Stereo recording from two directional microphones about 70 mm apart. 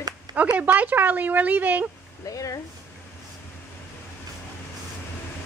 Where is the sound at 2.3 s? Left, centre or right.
Left.